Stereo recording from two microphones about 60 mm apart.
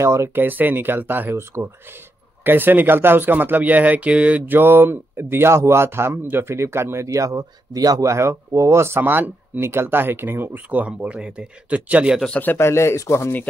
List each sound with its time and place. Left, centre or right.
0.0 s a man's voice: right
0.3 s speech: right
4.6 s a man's voice: right
8.0 s speech: right
10.9 s speech: centre
12.5 s speech: left